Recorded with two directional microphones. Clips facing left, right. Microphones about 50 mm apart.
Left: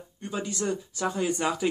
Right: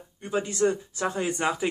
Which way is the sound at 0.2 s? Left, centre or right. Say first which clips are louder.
Right 6 dB; right.